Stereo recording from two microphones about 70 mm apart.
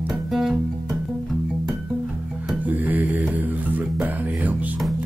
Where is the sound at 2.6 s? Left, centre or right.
Right.